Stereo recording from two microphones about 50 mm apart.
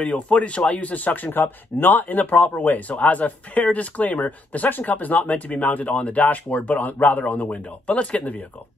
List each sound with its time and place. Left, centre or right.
0.0 s speech: left